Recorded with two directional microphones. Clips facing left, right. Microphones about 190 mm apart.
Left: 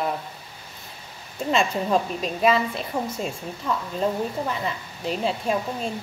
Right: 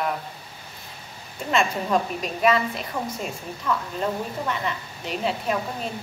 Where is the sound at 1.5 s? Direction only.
30° left (ahead or behind).